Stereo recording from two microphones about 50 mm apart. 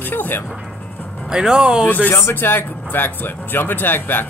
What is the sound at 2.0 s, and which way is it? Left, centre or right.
Speech, left.